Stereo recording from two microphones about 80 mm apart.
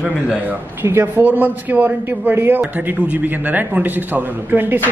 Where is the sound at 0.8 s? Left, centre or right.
Right.